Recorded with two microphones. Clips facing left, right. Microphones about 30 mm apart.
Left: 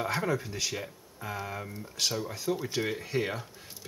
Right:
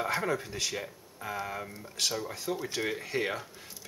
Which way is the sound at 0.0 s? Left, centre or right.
Centre.